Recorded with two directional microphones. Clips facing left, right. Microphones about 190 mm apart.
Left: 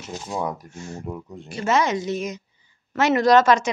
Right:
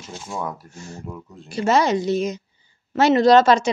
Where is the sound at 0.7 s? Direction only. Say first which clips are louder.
Left 2 dB; 35° right (ahead or behind).